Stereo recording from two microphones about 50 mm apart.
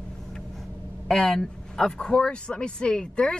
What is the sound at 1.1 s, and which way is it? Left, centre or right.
Speech, centre.